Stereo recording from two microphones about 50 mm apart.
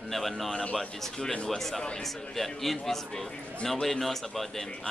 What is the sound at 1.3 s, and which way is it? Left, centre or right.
Speech, centre.